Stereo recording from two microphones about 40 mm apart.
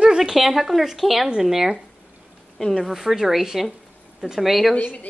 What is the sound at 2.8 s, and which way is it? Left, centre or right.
A woman's voice, centre.